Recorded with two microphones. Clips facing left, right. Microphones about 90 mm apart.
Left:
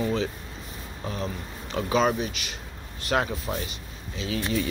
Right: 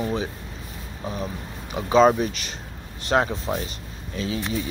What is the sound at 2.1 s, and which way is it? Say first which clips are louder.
Speech: right 5 dB; 45° right (ahead or behind).